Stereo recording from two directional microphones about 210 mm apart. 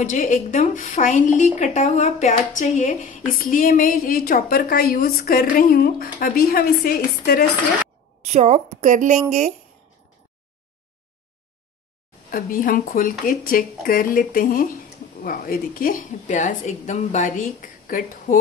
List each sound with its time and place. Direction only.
0.0 s a woman's voice: 40° left (ahead or behind)
8.2 s a woman's voice: 30° right (ahead or behind)
12.3 s a woman's voice: 45° left (ahead or behind)